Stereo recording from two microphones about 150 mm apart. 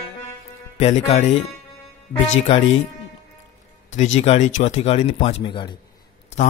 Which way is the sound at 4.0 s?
50° left (ahead or behind).